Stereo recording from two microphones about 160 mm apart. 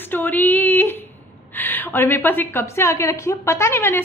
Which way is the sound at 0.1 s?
10° left (ahead or behind).